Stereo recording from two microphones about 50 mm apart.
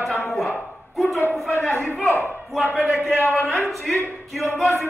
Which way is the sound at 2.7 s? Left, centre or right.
Centre.